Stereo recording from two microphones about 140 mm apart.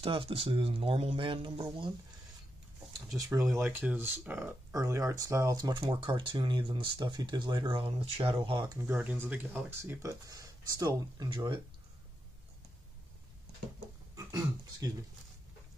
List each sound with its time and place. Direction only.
0.0 s speech: 40° right (ahead or behind)
3.2 s speech: 25° right (ahead or behind); by 8.6 s 40° right (ahead or behind)
8.8 s speech: 15° right (ahead or behind); by 11.6 s 35° right (ahead or behind)
14.1 s a sound: 25° right (ahead or behind)